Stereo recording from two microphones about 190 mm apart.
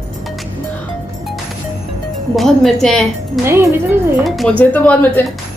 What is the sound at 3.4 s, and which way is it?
Speech, 15° right (ahead or behind).